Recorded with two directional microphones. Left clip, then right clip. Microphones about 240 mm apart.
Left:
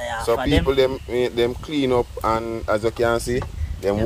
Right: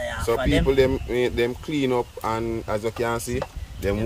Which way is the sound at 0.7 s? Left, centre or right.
Centre.